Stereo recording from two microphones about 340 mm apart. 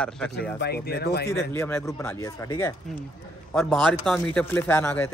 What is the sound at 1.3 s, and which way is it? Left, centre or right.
A man's voice, centre.